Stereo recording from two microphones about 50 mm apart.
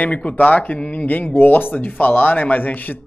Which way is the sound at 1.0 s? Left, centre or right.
Left.